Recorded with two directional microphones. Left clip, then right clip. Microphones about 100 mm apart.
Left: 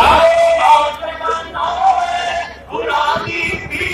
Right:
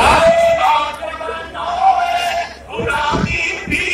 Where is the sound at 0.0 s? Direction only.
5° right (ahead or behind).